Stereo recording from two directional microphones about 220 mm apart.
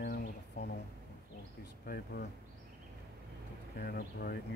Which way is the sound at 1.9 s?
45° left (ahead or behind).